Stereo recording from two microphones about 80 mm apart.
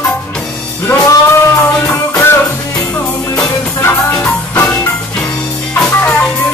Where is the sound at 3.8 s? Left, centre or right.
Left.